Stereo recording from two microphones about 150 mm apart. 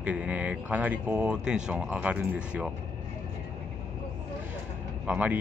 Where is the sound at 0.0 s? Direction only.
10° right (ahead or behind).